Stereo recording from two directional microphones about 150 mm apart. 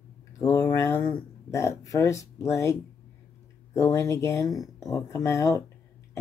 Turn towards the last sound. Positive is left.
turn(degrees=20)  # may be behind; listen again after turning